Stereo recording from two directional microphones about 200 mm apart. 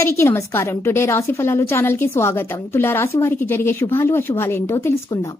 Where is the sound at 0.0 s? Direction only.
15° left (ahead or behind).